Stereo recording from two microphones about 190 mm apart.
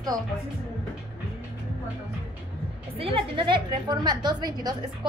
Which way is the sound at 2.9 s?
30° right (ahead or behind).